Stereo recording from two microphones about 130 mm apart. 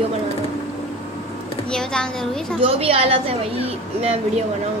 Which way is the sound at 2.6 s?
45° right (ahead or behind).